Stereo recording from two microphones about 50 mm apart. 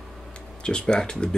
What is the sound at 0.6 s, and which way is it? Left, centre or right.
Speech, centre.